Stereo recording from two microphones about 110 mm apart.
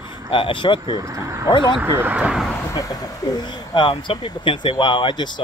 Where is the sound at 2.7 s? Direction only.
35° left (ahead or behind).